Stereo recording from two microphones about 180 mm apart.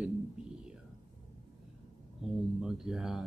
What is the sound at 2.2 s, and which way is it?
Speech, 5° right (ahead or behind).